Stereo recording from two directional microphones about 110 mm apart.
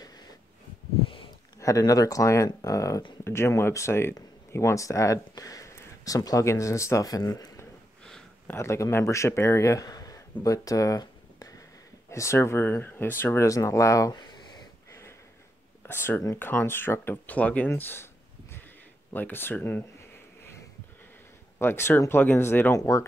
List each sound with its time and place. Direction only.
1.6 s speech: 30° left (ahead or behind)
10.4 s a sound: 30° left (ahead or behind)
12.1 s speech: 25° left (ahead or behind)
15.9 s speech: 20° left (ahead or behind)
19.1 s a sound: 20° left (ahead or behind)
21.5 s speech: 20° left (ahead or behind)